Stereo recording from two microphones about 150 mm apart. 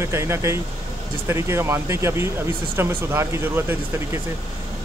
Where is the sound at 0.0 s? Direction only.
20° right (ahead or behind).